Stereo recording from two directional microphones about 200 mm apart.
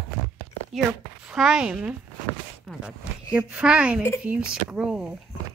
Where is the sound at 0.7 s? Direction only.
5° right (ahead or behind).